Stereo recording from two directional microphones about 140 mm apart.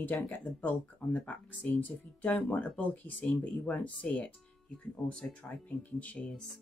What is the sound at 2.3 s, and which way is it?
Speech, centre (ahead or behind).